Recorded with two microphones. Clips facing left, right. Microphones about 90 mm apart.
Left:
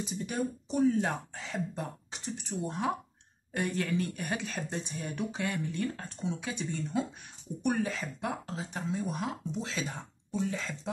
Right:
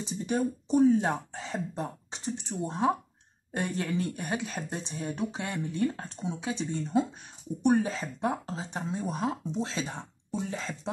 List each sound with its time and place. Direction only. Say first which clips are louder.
0.0 s speech: right 4 dB; 30° right (ahead or behind)